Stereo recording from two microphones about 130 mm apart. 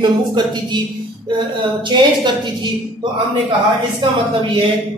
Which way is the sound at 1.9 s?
40° right (ahead or behind).